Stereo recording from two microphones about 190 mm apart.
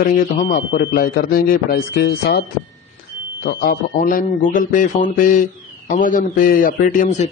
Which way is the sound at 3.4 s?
50° left (ahead or behind).